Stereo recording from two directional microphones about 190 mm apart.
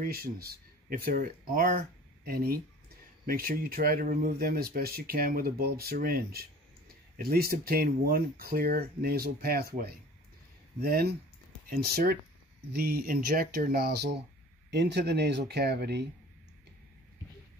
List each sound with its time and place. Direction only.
0.0 s speech: 55° right (ahead or behind)